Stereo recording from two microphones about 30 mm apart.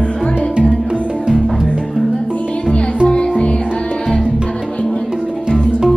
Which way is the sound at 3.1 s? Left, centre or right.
Left.